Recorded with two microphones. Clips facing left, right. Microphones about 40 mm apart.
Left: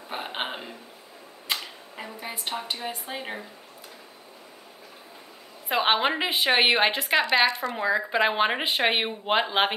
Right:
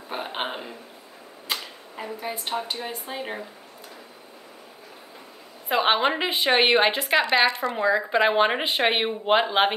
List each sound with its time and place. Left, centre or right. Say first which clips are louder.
0.1 s a sound: right 2 dB; centre
1.5 s speech: even; centre
5.7 s speech: right 2 dB; centre